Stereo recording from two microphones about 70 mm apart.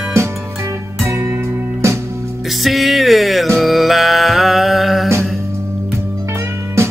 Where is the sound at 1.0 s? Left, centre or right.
Right.